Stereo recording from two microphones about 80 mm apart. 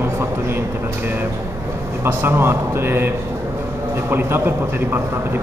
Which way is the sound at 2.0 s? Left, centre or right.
Right.